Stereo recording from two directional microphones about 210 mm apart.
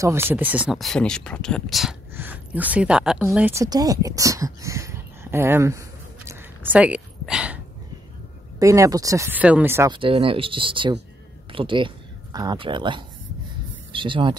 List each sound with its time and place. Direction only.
0.0 s speech: 10° right (ahead or behind)
8.5 s speech: 15° right (ahead or behind)
9.9 s speech: 25° right (ahead or behind)